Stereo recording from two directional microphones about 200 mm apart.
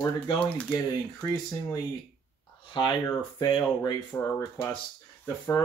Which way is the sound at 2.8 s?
25° left (ahead or behind).